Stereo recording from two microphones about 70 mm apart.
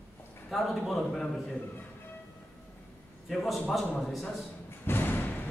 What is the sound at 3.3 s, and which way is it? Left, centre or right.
Speech, centre.